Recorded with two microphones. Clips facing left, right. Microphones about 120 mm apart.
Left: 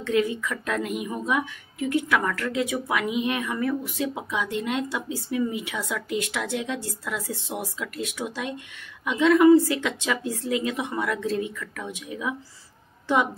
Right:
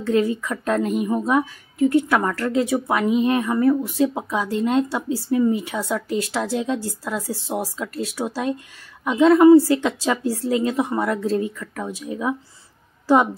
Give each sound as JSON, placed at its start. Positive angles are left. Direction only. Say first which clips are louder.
{"t": 0.0, "sound": "a woman's voice", "louder": "right 4 dB", "side_deg": -35}